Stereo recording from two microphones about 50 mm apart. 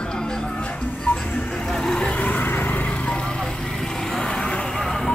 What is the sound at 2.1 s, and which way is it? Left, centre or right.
Vehicle, left.